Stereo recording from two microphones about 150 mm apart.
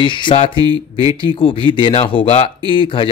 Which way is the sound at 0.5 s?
25° right (ahead or behind).